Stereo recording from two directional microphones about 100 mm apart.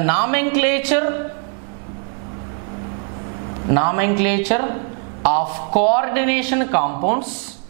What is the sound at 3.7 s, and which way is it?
A man's voice, 10° right (ahead or behind).